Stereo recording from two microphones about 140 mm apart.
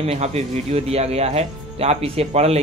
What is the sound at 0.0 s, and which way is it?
Speech, 50° right (ahead or behind).